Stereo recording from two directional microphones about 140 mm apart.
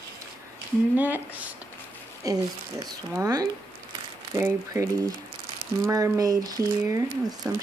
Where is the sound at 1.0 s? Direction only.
10° right (ahead or behind).